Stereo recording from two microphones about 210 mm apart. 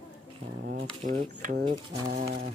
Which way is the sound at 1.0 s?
40° right (ahead or behind).